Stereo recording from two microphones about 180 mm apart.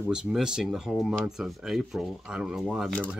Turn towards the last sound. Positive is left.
turn(degrees=0)  # may be behind; listen again after turning